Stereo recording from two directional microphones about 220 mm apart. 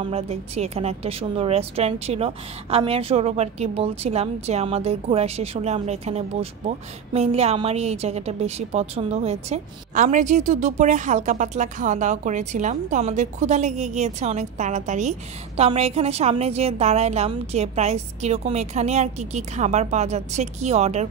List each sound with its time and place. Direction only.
0.0 s a woman's voice: 25° right (ahead or behind)